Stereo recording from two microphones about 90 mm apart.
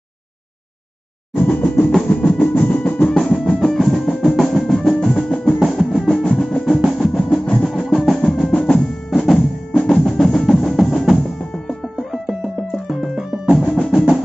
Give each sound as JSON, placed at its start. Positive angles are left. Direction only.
{"t": 1.3, "sound": "music", "side_deg": 15}
{"t": 2.2, "sound": "drum", "side_deg": 15}
{"t": 3.2, "sound": "music", "side_deg": 5}
{"t": 9.1, "sound": "drum", "side_deg": 5}
{"t": 12.8, "sound": "music", "side_deg": -5}
{"t": 13.7, "sound": "percussion", "side_deg": 5}